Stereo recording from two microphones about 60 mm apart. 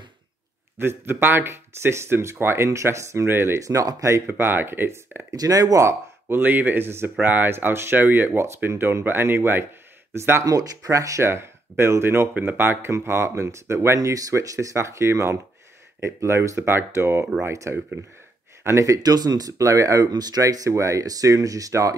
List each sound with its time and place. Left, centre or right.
0.7 s speech: right
3.3 s speech: right
3.5 s speech: right
4.3 s speech: right
5.3 s speech: right
5.9 s speech: right
10.1 s speech: right
10.4 s speech: right
11.2 s speech: right
18.0 s speech: right
18.6 s speech: right
18.9 s speech: right
20.7 s speech: right
21.0 s speech: right